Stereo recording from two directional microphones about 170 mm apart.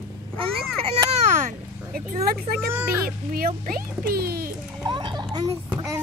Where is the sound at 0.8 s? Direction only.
40° right (ahead or behind).